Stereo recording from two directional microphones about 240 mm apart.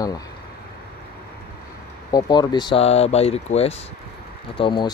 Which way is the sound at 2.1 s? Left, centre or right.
Centre.